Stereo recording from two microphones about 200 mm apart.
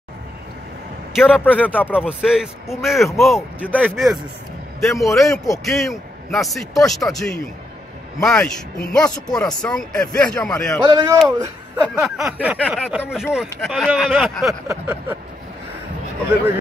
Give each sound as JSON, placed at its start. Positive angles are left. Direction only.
{"t": 1.3, "sound": "speech", "side_deg": 10}
{"t": 2.0, "sound": "speech", "side_deg": -5}
{"t": 10.9, "sound": "speech", "side_deg": -20}
{"t": 11.9, "sound": "speech", "side_deg": -5}
{"t": 14.7, "sound": "vehicle", "side_deg": -10}